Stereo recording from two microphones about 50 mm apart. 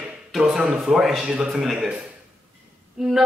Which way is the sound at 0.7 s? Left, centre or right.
Centre.